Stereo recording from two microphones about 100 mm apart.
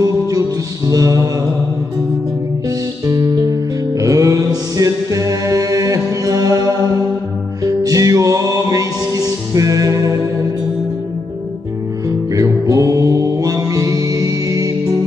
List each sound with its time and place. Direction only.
0.0 s music: 35° right (ahead or behind)
3.1 s music: 35° right (ahead or behind)
12.4 s mantra: 35° right (ahead or behind)